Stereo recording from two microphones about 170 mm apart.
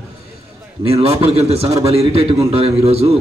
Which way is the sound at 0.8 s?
35° right (ahead or behind).